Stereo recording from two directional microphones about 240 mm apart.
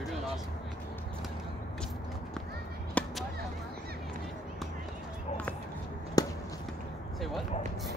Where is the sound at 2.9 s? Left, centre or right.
Centre.